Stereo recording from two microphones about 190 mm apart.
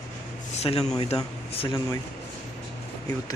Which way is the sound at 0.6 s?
35° left (ahead or behind).